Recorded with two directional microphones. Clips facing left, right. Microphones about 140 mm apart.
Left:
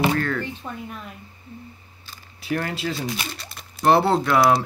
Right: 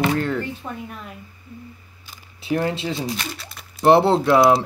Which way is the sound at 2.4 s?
20° right (ahead or behind).